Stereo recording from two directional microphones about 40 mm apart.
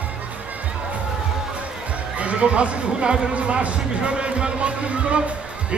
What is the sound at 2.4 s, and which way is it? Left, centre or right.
Speech, right.